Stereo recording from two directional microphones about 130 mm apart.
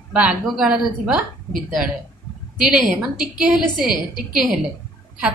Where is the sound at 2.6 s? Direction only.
5° right (ahead or behind).